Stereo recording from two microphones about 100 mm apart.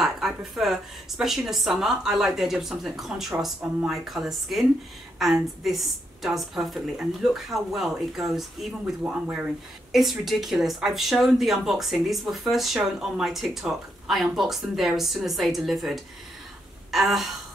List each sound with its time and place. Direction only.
0.0 s speech: 5° right (ahead or behind)